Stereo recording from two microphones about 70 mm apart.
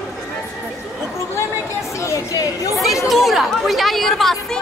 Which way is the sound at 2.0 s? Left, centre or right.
Left.